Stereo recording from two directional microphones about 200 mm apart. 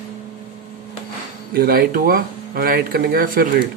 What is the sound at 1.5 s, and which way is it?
Speech, 45° right (ahead or behind).